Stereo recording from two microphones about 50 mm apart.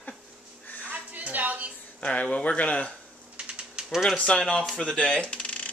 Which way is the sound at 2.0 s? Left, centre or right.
Left.